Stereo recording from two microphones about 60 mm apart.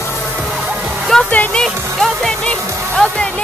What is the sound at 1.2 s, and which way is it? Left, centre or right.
Music, left.